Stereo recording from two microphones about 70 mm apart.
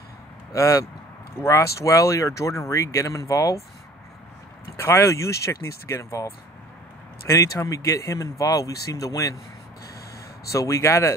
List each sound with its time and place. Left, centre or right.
0.5 s speech: left
4.7 s speech: left
10.5 s speech: left